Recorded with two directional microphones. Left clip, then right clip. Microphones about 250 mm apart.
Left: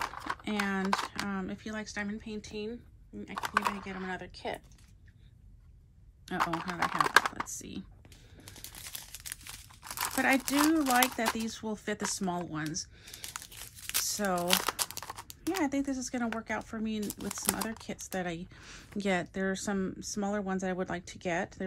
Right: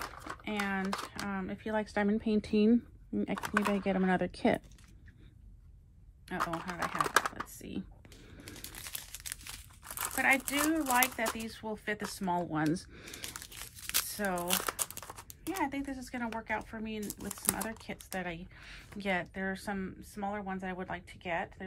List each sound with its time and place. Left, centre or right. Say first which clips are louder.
0.0 s a sound: left 6 dB; centre
0.8 s speech: left 5 dB; centre; by 2.7 s right
3.3 s speech: left 3 dB; centre
3.8 s speech: right 8 dB; right
6.2 s speech: left 3 dB; centre
8.5 s crumpling: right 1 dB; centre
10.1 s speech: even; centre
10.8 s speech: left 2 dB; centre
11.3 s speech: left 3 dB; centre
13.2 s crumpling: left 2 dB; centre
14.2 s speech: left 5 dB; centre
14.6 s crumpling: left 4 dB; centre
15.6 s speech: left 1 dB; centre
17.3 s speech: left 2 dB; centre